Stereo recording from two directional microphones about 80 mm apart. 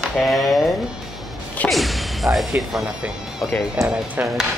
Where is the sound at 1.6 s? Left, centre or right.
Centre.